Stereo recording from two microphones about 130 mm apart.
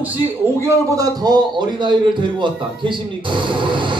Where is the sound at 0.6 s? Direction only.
25° right (ahead or behind).